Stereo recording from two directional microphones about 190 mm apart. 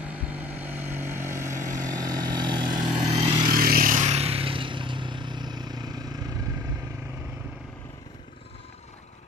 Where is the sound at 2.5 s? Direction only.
25° right (ahead or behind).